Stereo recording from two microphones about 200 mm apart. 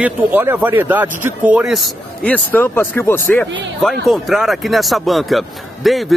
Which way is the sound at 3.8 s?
Centre (ahead or behind).